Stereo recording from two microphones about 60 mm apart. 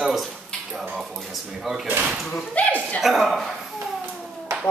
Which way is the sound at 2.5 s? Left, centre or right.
Left.